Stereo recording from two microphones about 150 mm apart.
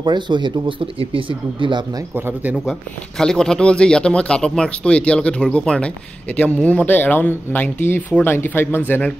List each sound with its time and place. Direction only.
0.0 s speech: 30° right (ahead or behind)
2.1 s speech: 15° right (ahead or behind)
2.5 s speech: centre (ahead or behind)